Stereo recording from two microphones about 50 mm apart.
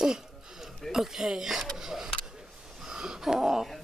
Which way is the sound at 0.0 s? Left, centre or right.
Centre.